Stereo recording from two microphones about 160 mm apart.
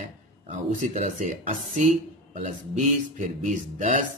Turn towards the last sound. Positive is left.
turn(degrees=-50)  # may be behind; listen again after turning